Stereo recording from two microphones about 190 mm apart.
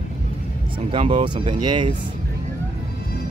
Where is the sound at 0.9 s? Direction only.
25° right (ahead or behind).